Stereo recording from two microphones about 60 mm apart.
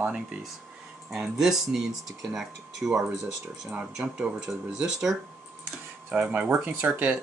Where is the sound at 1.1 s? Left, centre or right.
Centre.